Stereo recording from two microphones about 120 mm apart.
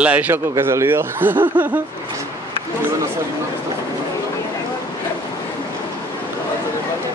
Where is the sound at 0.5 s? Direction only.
20° right (ahead or behind).